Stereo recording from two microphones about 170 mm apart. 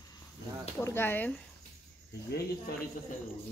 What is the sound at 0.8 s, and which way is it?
Speech, 15° left (ahead or behind).